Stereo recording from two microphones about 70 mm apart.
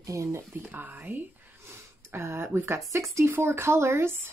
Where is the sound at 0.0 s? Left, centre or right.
Right.